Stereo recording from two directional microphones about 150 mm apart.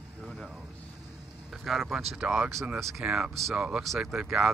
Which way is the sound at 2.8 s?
Centre (ahead or behind).